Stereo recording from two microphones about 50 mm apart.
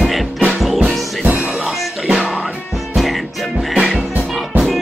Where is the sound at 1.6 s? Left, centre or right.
Centre.